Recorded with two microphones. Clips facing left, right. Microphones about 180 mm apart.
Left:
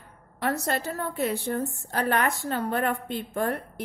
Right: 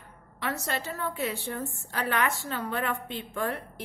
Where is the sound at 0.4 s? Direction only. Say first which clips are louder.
Left 5 dB; 45° left (ahead or behind).